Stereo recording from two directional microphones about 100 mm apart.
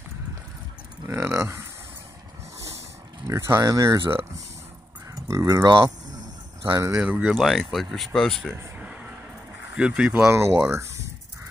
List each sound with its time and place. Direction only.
1.0 s speech: 25° right (ahead or behind)
3.3 s speech: 30° right (ahead or behind)
5.3 s speech: 30° right (ahead or behind)
6.6 s speech: 30° right (ahead or behind)
7.0 s speech: 10° right (ahead or behind)
7.3 s speech: centre (ahead or behind)
8.7 s a sound: 15° right (ahead or behind)
9.8 s speech: 10° right (ahead or behind)
10.3 s speech: 25° right (ahead or behind)